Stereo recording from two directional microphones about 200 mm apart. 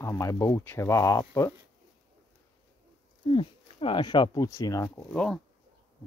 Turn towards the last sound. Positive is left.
turn(degrees=5)  # may be behind; listen again after turning